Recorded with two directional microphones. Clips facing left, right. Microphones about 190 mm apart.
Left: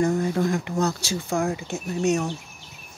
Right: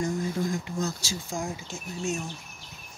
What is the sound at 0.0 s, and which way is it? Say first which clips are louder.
Speech: left 6 dB; 65° left (ahead or behind).